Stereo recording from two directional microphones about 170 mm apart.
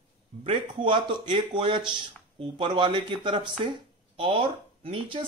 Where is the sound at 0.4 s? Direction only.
30° right (ahead or behind).